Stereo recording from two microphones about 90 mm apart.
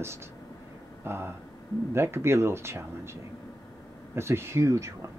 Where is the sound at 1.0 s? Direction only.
25° right (ahead or behind).